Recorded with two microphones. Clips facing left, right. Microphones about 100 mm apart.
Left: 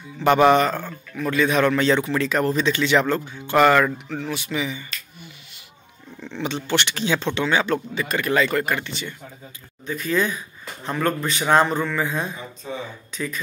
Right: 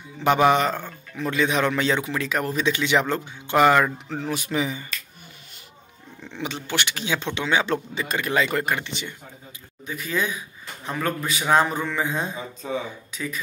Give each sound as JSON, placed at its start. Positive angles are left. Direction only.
{"t": 0.2, "sound": "speech", "side_deg": -15}
{"t": 4.1, "sound": "speech", "side_deg": -35}
{"t": 6.2, "sound": "speech", "side_deg": -10}
{"t": 7.6, "sound": "speech", "side_deg": -25}
{"t": 12.6, "sound": "speech", "side_deg": -90}
{"t": 13.1, "sound": "speech", "side_deg": -5}